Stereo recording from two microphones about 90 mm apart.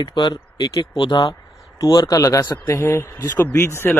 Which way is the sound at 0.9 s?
60° left (ahead or behind).